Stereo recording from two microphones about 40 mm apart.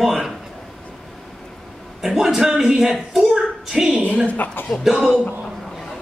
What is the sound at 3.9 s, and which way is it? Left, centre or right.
Speech, right.